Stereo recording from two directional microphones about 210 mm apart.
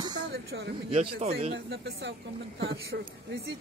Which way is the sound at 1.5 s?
55° right (ahead or behind).